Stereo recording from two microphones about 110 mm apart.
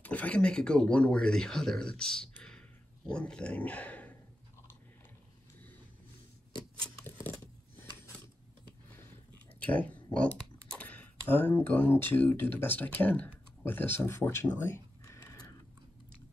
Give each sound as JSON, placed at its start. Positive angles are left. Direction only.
{"t": 0.0, "sound": "speech", "side_deg": 15}
{"t": 9.7, "sound": "speech", "side_deg": 15}